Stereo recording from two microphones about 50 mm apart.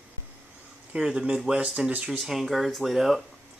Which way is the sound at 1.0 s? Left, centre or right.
Centre.